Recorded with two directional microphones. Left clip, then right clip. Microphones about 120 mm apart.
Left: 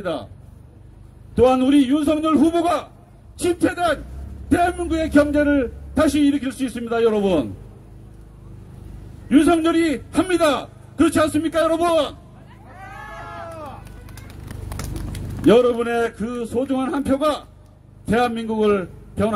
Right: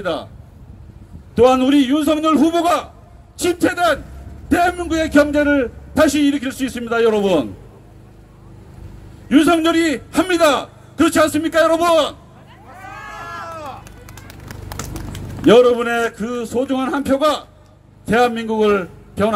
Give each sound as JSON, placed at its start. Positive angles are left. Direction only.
{"t": 0.0, "sound": "a man's voice", "side_deg": -45}
{"t": 1.3, "sound": "a man's voice", "side_deg": -40}
{"t": 9.3, "sound": "a man's voice", "side_deg": -40}
{"t": 14.2, "sound": "run", "side_deg": -25}
{"t": 15.4, "sound": "a man's voice", "side_deg": -40}